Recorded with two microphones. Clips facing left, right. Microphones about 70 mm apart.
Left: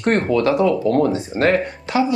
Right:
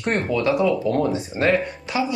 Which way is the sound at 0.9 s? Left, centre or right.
Left.